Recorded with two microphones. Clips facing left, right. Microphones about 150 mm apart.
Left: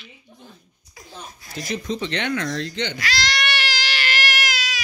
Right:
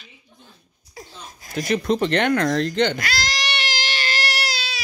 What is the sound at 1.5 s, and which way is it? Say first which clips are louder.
Speech: right 6 dB; 60° right (ahead or behind).